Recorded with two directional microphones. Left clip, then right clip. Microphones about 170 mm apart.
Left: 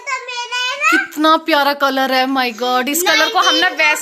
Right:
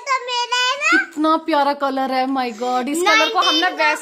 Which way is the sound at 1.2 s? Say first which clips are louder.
Left 4 dB; centre (ahead or behind).